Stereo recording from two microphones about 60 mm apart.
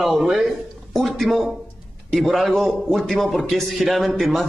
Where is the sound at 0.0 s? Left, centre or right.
Centre.